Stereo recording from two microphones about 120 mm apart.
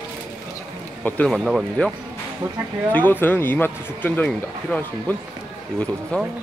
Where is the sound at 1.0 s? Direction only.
10° left (ahead or behind).